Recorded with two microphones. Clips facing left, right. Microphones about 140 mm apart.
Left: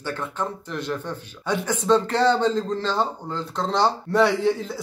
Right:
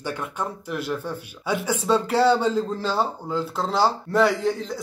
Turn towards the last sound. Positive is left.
turn(degrees=0)  # may be behind; listen again after turning